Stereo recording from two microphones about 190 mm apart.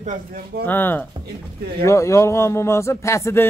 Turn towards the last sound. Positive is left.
turn(degrees=15)  # may be behind; listen again after turning